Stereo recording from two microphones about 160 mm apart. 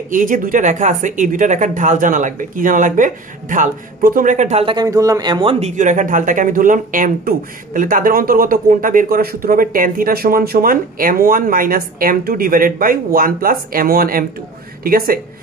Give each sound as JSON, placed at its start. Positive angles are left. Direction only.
{"t": 0.1, "sound": "speech", "side_deg": -55}
{"t": 4.6, "sound": "speech", "side_deg": -25}
{"t": 5.8, "sound": "speech", "side_deg": -50}